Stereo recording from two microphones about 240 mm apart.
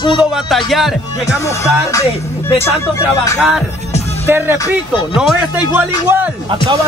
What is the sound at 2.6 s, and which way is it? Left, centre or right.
Speech, centre.